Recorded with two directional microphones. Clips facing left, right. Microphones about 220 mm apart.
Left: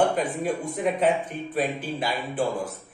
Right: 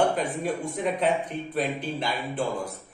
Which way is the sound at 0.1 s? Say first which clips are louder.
Left 2 dB; centre (ahead or behind).